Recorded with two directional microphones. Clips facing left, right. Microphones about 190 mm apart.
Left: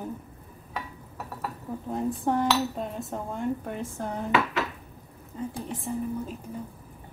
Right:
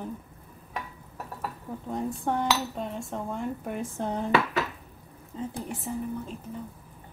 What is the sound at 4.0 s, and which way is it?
Dishes, 25° right (ahead or behind).